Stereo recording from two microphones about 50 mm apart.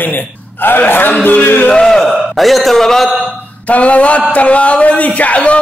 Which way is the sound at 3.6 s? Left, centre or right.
Left.